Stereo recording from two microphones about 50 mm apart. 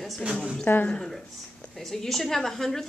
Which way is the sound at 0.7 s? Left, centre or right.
Left.